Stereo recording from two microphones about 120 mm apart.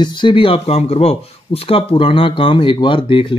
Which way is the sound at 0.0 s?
40° left (ahead or behind).